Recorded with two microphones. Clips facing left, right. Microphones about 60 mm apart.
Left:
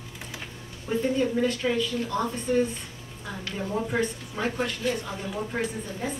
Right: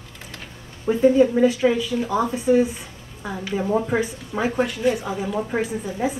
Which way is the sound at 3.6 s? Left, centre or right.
Right.